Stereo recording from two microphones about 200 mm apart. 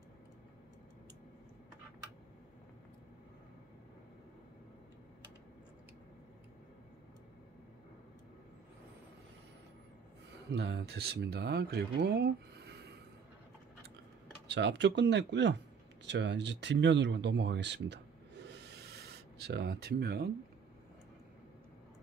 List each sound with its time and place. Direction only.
10.5 s speech: 55° right (ahead or behind)
14.5 s speech: 60° right (ahead or behind)